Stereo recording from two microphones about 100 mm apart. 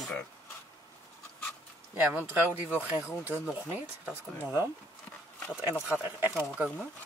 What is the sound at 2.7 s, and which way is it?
Speech, 15° right (ahead or behind).